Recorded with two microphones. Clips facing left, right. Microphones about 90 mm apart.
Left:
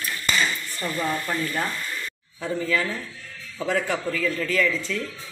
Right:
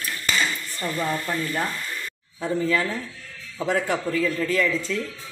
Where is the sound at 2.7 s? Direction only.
25° right (ahead or behind).